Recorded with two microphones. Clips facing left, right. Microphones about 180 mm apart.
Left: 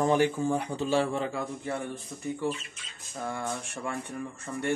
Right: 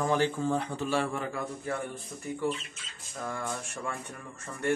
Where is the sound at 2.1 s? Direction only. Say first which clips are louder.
Left 2 dB; 5° left (ahead or behind).